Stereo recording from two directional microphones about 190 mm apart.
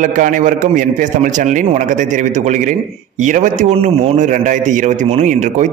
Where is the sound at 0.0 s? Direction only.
45° right (ahead or behind).